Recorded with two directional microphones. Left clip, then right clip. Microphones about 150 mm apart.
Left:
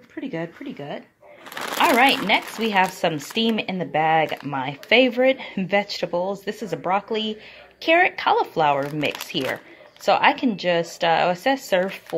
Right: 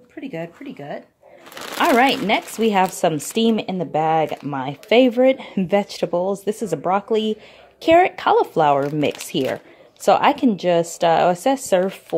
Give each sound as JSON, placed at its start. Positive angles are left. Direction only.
{"t": 0.2, "sound": "speech", "side_deg": 0}
{"t": 1.5, "sound": "a sound", "side_deg": 0}
{"t": 2.0, "sound": "a woman's voice", "side_deg": -40}